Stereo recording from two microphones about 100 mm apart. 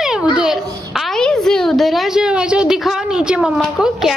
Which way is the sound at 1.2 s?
5° left (ahead or behind).